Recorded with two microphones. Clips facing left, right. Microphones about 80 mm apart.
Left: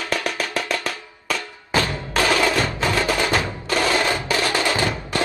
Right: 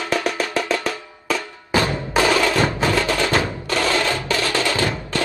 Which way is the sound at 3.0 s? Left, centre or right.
Centre.